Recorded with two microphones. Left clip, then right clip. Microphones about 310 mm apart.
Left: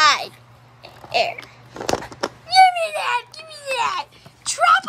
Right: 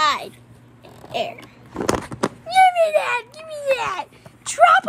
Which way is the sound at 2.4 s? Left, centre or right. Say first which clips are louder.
Left 1 dB; centre.